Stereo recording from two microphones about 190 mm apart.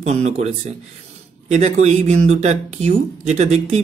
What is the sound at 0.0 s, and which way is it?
Speech, 35° right (ahead or behind).